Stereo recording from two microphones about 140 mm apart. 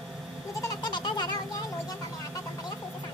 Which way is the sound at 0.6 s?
30° left (ahead or behind).